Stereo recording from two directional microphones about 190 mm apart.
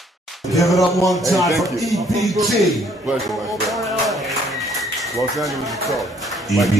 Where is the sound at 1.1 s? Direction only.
Centre (ahead or behind).